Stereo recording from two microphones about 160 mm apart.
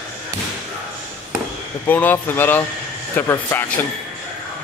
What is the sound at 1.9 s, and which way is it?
Speech, 10° left (ahead or behind).